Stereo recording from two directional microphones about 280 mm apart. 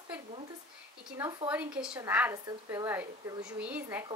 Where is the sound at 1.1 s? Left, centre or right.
Centre.